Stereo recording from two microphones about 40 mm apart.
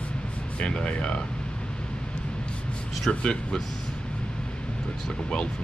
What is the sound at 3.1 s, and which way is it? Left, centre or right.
Speech, left.